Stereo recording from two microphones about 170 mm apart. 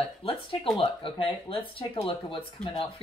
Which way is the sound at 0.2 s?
35° left (ahead or behind).